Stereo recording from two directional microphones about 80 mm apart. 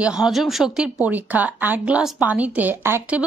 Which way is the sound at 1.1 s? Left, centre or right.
Centre.